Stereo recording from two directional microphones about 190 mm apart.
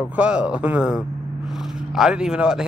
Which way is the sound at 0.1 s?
5° right (ahead or behind).